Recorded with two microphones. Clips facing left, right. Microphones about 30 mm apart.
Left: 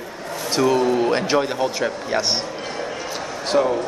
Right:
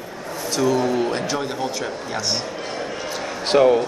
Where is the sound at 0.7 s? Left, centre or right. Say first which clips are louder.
Left 2 dB; centre.